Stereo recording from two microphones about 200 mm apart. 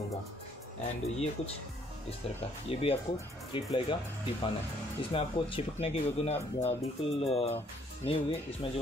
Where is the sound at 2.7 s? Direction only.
30° left (ahead or behind).